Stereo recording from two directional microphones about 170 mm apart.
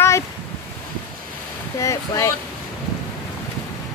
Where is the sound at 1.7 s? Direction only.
20° left (ahead or behind).